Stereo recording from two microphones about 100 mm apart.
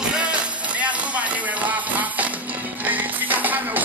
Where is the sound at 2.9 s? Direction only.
15° right (ahead or behind).